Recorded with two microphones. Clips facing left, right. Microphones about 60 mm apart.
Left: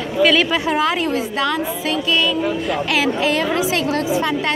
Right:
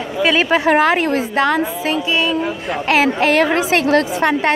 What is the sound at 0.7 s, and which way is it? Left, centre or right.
A woman's voice, right.